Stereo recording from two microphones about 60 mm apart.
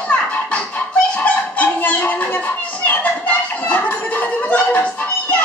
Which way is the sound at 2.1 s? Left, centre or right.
Left.